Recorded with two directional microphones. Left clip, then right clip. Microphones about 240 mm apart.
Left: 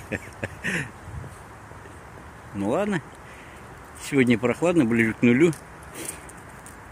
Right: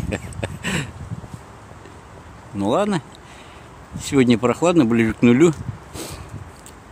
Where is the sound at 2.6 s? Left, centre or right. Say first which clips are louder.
Right 5 dB; centre.